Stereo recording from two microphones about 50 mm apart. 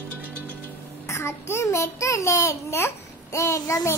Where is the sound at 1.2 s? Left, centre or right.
Left.